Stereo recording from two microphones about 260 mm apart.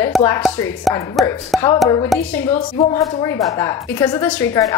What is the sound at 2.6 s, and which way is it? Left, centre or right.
Speech, left.